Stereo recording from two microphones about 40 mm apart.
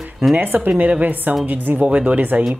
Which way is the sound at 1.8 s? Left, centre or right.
Right.